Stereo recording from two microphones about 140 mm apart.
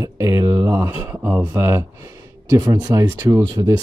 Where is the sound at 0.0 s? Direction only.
20° right (ahead or behind).